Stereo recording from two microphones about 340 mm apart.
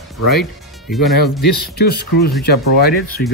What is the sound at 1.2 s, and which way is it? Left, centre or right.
Speech, left.